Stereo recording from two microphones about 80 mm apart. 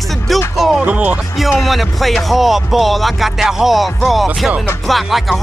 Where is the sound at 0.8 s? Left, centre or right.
Centre.